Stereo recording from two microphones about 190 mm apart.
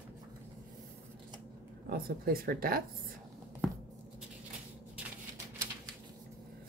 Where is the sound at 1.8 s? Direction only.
50° right (ahead or behind).